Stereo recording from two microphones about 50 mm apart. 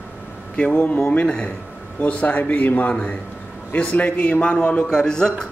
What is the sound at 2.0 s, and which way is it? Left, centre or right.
A man's voice, left.